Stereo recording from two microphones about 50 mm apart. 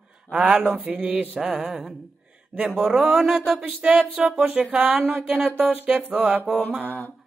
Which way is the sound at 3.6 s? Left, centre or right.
Right.